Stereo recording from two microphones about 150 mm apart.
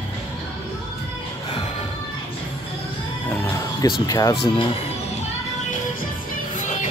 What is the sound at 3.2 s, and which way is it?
Music, 15° left (ahead or behind).